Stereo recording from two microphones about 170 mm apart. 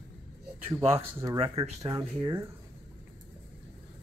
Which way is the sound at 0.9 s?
20° right (ahead or behind).